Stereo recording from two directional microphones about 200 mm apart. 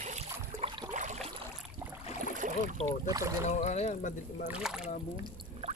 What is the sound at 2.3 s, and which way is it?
Boat, 40° right (ahead or behind).